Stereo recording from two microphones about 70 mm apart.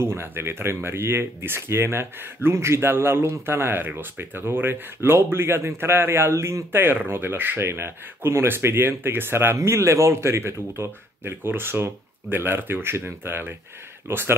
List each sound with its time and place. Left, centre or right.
0.0 s speech: right